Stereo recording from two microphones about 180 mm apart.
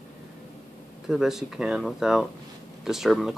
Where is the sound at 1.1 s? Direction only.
Centre (ahead or behind).